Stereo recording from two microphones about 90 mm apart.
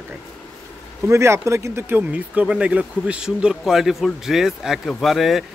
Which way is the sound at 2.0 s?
15° right (ahead or behind).